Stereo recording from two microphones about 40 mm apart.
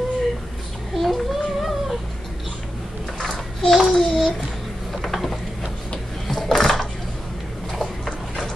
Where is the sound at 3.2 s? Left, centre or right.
Centre.